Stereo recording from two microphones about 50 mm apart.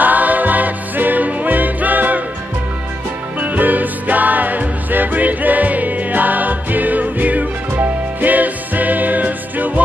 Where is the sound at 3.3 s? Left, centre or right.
Right.